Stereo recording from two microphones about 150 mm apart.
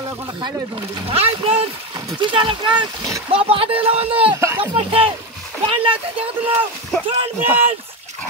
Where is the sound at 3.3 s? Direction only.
40° right (ahead or behind).